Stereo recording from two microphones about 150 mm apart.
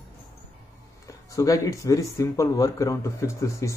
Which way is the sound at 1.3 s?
20° left (ahead or behind).